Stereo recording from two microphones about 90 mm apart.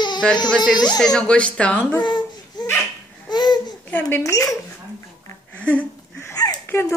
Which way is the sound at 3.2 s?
50° left (ahead or behind).